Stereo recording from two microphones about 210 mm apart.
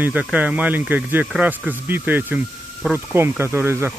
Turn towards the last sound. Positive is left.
turn(degrees=-10)  # may be behind; listen again after turning